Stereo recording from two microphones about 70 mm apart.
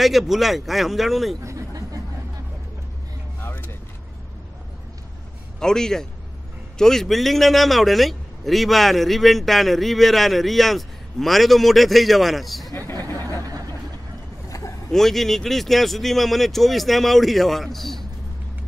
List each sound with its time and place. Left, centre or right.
0.0 s a man's voice: centre
1.4 s a sound: right
3.3 s vehicle: left
5.6 s a man's voice: centre
14.9 s a man's voice: centre